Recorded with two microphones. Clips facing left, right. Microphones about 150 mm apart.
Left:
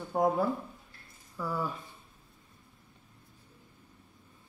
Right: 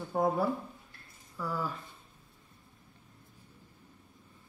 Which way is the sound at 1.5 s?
20° left (ahead or behind).